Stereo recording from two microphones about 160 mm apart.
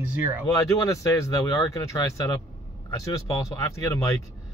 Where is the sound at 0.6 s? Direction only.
20° left (ahead or behind).